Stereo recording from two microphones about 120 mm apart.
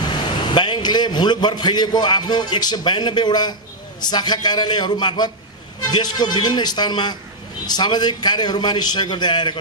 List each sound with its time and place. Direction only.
0.5 s a man's voice: 40° left (ahead or behind)